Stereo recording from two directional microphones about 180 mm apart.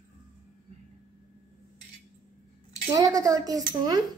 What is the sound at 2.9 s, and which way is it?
Speech, 20° right (ahead or behind).